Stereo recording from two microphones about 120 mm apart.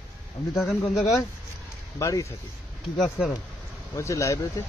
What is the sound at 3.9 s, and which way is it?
Speech, 25° left (ahead or behind).